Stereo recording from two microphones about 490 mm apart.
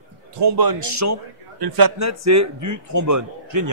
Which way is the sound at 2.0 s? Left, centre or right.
Right.